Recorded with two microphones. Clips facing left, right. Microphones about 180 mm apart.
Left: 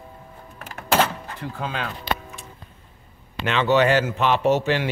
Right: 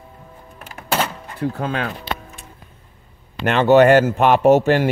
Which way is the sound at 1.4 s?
50° right (ahead or behind).